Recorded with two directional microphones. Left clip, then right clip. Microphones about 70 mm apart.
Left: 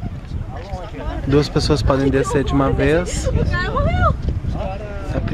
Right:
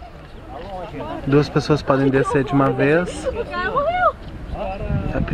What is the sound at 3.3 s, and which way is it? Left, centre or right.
Speech, left.